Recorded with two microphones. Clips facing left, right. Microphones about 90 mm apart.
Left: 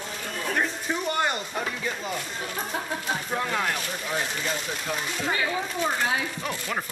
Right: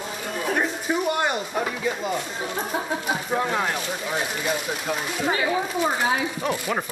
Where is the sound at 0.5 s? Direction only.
10° right (ahead or behind).